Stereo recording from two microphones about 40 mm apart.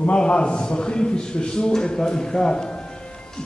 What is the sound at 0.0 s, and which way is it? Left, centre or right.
A man's voice, left.